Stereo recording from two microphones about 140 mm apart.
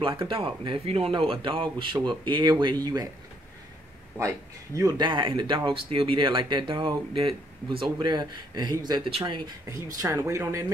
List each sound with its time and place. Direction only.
0.0 s speech: 40° right (ahead or behind)
4.2 s speech: 20° right (ahead or behind)
10.0 s speech: 20° right (ahead or behind)